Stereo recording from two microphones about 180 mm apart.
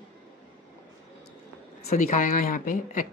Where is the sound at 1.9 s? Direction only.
45° left (ahead or behind).